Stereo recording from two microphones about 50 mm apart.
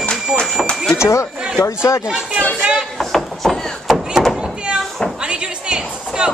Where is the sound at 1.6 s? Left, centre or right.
Left.